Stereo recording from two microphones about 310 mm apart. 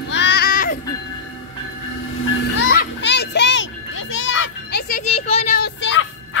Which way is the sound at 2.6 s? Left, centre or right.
Left.